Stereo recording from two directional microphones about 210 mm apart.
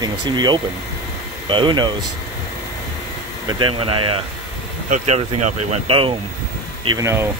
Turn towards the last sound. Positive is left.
turn(degrees=-15)  # may be behind; listen again after turning